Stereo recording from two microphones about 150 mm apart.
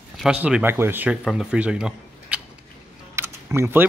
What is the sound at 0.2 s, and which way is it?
Speech, 5° right (ahead or behind).